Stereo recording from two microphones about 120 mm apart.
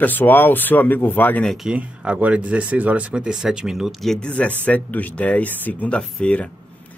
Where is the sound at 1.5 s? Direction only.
5° right (ahead or behind).